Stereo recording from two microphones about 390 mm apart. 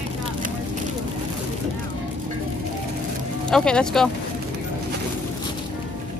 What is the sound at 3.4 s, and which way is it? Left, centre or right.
Speech, centre.